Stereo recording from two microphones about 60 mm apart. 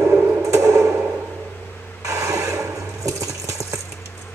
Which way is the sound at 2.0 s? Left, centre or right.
Right.